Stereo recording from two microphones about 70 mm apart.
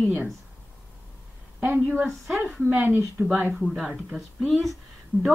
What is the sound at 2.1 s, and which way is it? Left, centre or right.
A woman's voice, centre.